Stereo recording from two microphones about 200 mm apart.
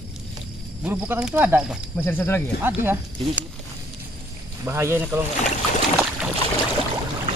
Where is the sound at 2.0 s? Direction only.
10° left (ahead or behind).